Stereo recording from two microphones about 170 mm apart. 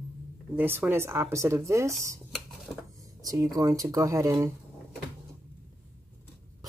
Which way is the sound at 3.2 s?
20° right (ahead or behind).